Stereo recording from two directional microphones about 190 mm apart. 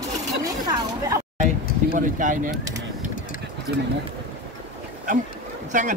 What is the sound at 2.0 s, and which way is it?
Speech, 45° right (ahead or behind).